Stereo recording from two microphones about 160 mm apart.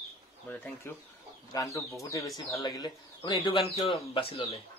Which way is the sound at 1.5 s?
20° left (ahead or behind).